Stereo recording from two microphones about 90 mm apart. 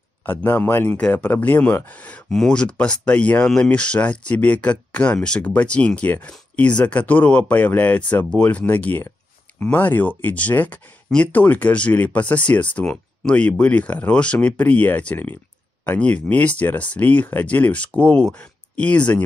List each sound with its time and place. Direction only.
0.3 s speech: 20° left (ahead or behind)